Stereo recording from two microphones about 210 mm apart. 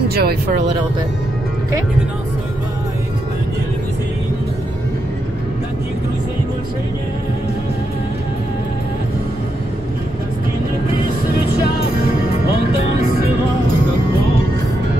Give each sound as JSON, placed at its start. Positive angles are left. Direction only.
{"t": 0.1, "sound": "speech", "side_deg": -50}